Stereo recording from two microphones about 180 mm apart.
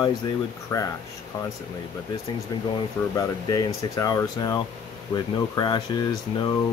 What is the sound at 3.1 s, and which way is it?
Speech, 20° left (ahead or behind).